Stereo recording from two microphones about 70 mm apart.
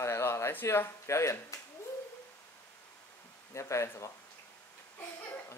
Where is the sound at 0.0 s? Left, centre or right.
Left.